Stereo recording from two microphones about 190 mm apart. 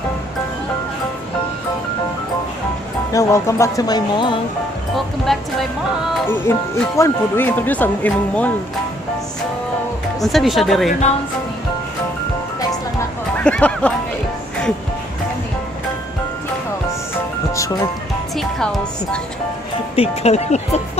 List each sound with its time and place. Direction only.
3.1 s speech: 15° left (ahead or behind)
4.9 s speech: centre (ahead or behind)
6.2 s speech: 10° left (ahead or behind)
10.2 s speech: centre (ahead or behind)
13.4 s speech: 5° left (ahead or behind)
18.3 s speech: centre (ahead or behind)
20.0 s speech: 35° left (ahead or behind)